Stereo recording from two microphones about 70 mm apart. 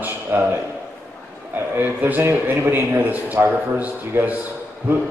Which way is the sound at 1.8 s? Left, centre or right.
Right.